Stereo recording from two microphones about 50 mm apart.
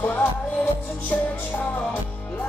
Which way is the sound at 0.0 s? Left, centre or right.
Left.